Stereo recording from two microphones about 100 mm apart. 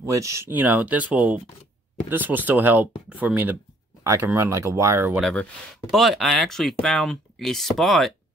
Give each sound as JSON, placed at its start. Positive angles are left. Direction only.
{"t": 0.0, "sound": "speech", "side_deg": -30}
{"t": 0.5, "sound": "speech", "side_deg": -15}
{"t": 4.0, "sound": "speech", "side_deg": -30}
{"t": 5.2, "sound": "speech", "side_deg": 5}